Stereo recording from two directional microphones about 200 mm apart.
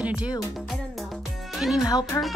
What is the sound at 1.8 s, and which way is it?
Speech, 15° left (ahead or behind).